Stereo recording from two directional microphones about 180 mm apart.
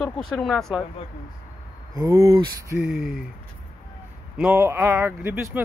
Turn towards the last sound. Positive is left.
turn(degrees=-10)  # may be behind; listen again after turning